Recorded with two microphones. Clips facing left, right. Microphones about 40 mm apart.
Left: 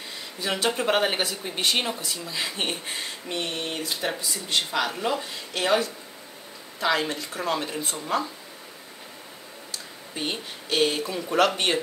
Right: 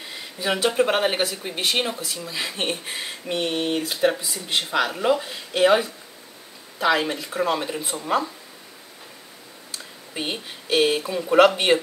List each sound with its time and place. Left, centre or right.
0.4 s speech: centre
0.7 s speech: centre
3.5 s speech: right
3.8 s speech: centre
10.2 s speech: centre